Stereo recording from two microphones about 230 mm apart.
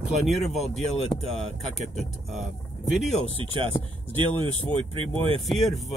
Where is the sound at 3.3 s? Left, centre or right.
Right.